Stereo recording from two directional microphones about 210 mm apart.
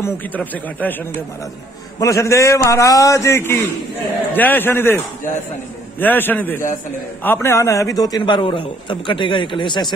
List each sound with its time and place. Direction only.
0.0 s a man's voice: 10° left (ahead or behind)